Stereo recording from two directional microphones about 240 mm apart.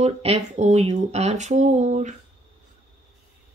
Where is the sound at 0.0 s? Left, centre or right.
Right.